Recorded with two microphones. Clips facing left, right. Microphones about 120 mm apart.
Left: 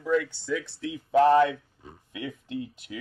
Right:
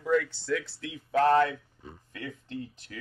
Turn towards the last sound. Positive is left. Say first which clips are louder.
# left 4 dB
turn(degrees=15)  # may be behind; listen again after turning